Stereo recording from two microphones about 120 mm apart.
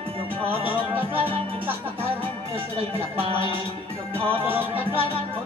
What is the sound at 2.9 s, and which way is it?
Speech, 50° right (ahead or behind).